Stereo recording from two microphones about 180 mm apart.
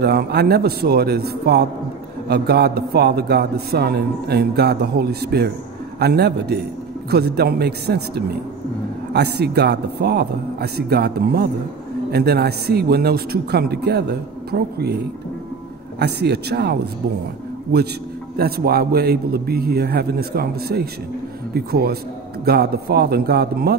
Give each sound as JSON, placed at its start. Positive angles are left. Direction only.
{"t": 0.0, "sound": "a man's voice", "side_deg": -65}
{"t": 18.3, "sound": "a man's voice", "side_deg": -60}